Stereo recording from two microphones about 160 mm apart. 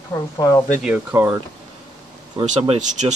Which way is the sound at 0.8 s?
10° right (ahead or behind).